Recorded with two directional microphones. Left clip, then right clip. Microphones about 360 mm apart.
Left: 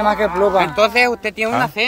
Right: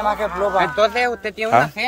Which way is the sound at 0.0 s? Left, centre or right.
Left.